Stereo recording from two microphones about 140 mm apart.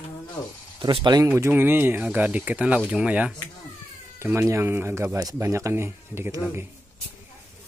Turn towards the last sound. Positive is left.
turn(degrees=-15)  # may be behind; listen again after turning